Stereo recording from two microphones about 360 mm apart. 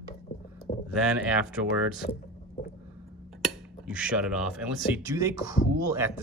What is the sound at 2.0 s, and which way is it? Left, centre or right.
Speech, left.